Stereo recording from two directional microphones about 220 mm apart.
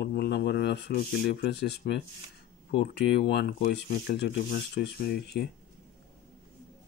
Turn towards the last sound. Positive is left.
turn(degrees=45)  # may be behind; listen again after turning